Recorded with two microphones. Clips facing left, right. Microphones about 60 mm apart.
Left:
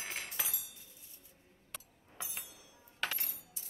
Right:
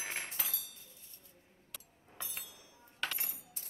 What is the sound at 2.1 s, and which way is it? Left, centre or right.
Chink, centre.